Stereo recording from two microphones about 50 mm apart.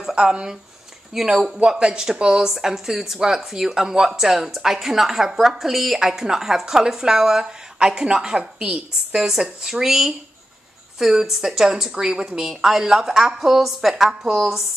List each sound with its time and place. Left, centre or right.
0.1 s speech: centre